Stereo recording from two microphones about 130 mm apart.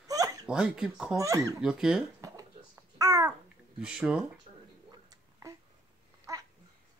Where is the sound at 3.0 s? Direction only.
25° right (ahead or behind).